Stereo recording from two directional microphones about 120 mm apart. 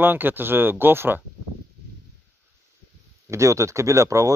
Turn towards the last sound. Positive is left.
turn(degrees=-25)  # may be behind; listen again after turning